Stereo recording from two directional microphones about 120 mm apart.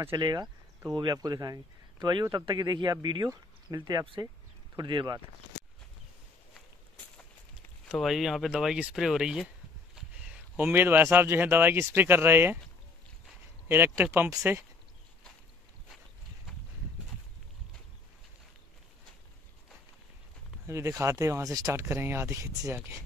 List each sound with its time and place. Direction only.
0.1 s speech: 35° right (ahead or behind)
4.0 s speech: 45° right (ahead or behind)
7.9 s speech: centre (ahead or behind); by 12.5 s 20° right (ahead or behind)
13.7 s speech: 20° right (ahead or behind)
20.6 s speech: 25° right (ahead or behind)